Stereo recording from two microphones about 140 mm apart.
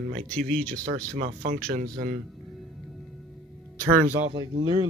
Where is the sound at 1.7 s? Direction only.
70° right (ahead or behind).